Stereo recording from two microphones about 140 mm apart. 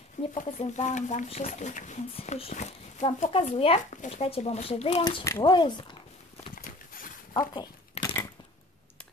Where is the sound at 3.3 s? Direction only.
45° left (ahead or behind).